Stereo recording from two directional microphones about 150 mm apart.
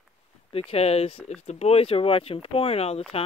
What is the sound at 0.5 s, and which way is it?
Speech, 40° left (ahead or behind).